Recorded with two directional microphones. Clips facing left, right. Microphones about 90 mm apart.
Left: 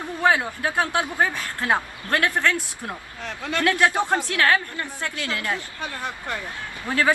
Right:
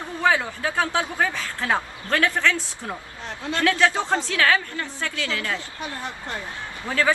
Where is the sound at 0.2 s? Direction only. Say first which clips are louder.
Left 1 dB; 15° left (ahead or behind).